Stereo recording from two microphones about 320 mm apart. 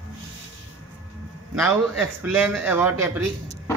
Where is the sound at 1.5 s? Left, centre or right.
Centre.